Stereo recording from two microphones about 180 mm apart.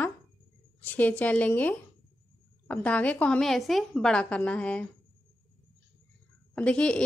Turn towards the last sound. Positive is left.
turn(degrees=5)  # may be behind; listen again after turning